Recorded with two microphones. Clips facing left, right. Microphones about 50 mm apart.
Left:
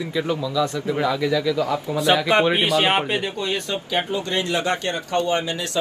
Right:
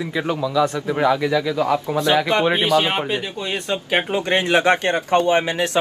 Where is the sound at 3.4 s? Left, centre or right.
Right.